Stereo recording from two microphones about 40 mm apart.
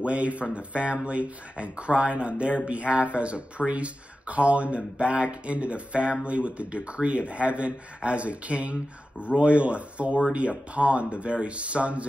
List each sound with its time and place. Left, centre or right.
0.0 s speech: right